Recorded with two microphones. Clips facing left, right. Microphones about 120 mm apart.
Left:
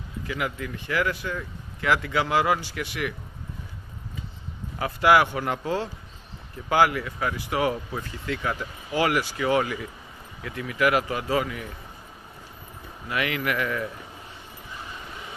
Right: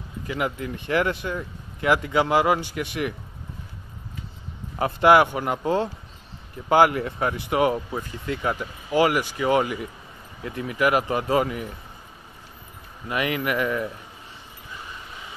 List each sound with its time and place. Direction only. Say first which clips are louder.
0.3 s speech: right 3 dB; 25° right (ahead or behind)
4.7 s speech: right 3 dB; 25° right (ahead or behind)
13.1 s speech: right 2 dB; 20° right (ahead or behind)